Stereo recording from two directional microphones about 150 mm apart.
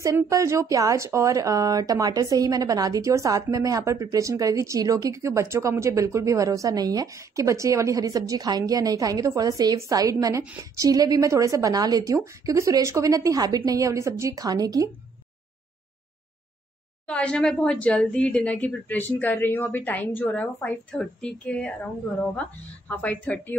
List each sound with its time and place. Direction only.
0.0 s a woman's voice: 20° right (ahead or behind)
17.0 s speech: 10° left (ahead or behind)